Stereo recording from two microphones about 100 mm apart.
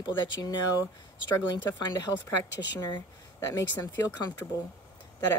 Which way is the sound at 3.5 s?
35° left (ahead or behind).